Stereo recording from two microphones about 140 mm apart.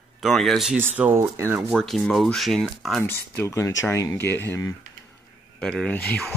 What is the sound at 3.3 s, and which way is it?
Speech, 20° left (ahead or behind).